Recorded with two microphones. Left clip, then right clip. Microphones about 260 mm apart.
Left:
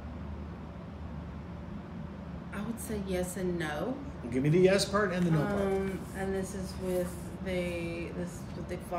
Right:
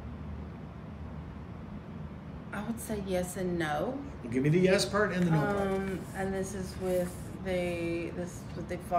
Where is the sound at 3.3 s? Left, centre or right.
Centre.